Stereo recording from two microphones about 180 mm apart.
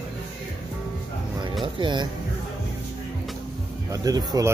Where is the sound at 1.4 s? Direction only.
25° right (ahead or behind).